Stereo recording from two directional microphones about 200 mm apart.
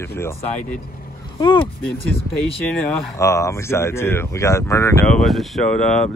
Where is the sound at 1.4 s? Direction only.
25° left (ahead or behind).